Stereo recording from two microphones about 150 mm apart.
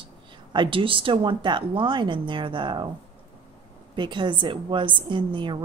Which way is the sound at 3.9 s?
30° right (ahead or behind).